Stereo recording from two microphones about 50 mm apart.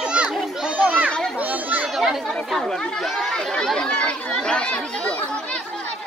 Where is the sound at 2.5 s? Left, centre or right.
Centre; by 5.2 s left.